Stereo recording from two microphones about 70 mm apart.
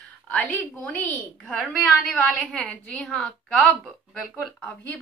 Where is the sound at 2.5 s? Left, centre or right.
Centre.